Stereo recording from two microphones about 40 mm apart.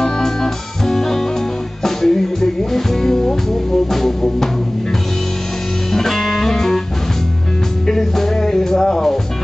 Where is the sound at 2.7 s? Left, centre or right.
Centre.